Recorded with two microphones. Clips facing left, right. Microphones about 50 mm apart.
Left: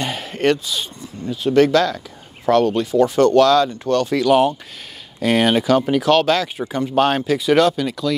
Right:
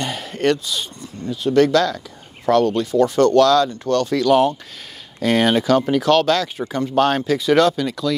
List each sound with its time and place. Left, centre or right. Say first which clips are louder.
0.0 s speech: left 1 dB; left